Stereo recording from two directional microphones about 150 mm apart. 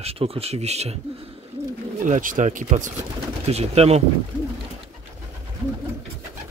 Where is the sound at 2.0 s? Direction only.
60° right (ahead or behind).